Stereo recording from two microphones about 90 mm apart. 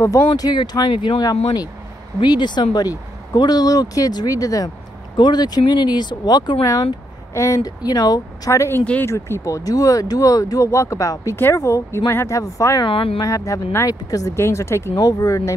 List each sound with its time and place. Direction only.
0.4 s speech: 50° left (ahead or behind)
1.2 s speech: 45° left (ahead or behind)
5.1 s speech: 55° left (ahead or behind)
6.6 s speech: 40° left (ahead or behind)
8.5 s speech: 30° left (ahead or behind)
12.8 s speech: 80° left
13.2 s speech: 35° left (ahead or behind)